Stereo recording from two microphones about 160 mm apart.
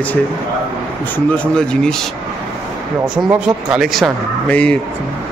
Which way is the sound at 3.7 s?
Centre (ahead or behind).